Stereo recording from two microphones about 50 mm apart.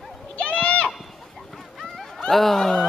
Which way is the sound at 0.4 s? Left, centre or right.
Left.